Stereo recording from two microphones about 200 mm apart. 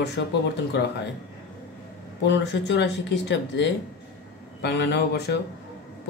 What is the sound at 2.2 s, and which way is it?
Speech, 60° left (ahead or behind).